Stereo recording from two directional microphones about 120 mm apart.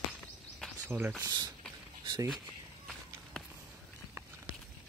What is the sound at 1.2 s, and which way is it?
Speech, 35° right (ahead or behind).